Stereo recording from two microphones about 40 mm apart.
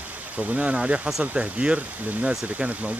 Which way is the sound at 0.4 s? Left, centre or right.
Right.